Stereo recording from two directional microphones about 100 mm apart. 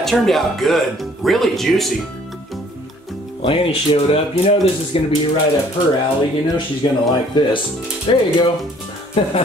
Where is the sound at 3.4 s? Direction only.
65° left (ahead or behind).